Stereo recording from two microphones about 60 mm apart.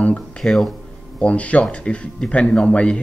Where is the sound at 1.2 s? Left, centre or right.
Left.